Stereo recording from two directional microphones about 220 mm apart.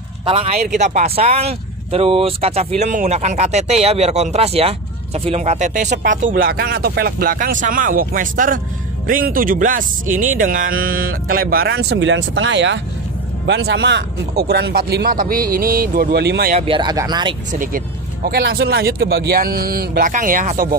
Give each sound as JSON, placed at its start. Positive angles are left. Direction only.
{"t": 0.2, "sound": "speech", "side_deg": -25}
{"t": 16.5, "sound": "speech", "side_deg": -25}
{"t": 17.5, "sound": "speech", "side_deg": -40}